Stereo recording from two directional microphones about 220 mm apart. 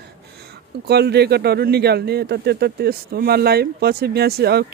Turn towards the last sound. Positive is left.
turn(degrees=-45)  # may be behind; listen again after turning